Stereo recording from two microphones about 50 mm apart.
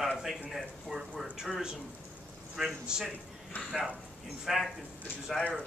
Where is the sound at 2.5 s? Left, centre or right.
Centre.